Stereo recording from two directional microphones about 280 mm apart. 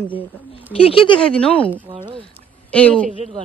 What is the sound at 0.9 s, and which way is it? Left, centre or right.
Speech, centre.